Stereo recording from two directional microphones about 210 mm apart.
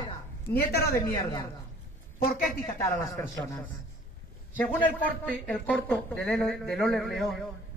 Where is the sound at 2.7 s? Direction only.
15° left (ahead or behind).